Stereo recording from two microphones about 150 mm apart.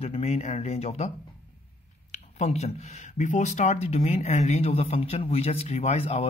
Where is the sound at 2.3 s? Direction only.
50° left (ahead or behind).